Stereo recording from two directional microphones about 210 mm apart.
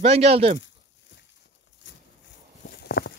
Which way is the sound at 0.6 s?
60° left (ahead or behind).